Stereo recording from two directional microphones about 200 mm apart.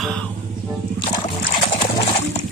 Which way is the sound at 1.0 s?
25° left (ahead or behind).